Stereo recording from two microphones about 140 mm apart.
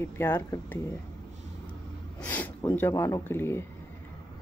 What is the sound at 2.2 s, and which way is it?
Speech, 10° left (ahead or behind).